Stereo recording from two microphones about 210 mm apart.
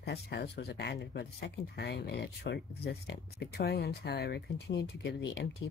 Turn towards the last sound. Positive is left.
turn(degrees=55)  # may be behind; listen again after turning